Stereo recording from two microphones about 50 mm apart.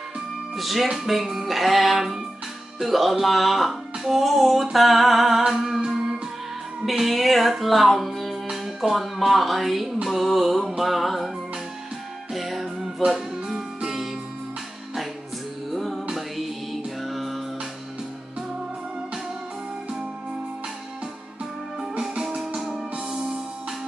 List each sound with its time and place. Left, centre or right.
0.6 s speech: centre
4.7 s music: centre
6.9 s music: centre
10.0 s speech: centre
12.3 s music: centre
15.7 s music: centre
21.7 s music: centre